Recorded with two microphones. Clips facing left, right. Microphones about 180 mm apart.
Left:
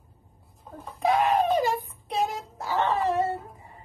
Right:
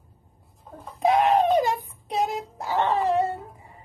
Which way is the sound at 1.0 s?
20° right (ahead or behind).